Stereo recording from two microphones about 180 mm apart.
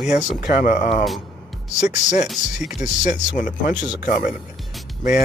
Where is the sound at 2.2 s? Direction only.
5° right (ahead or behind).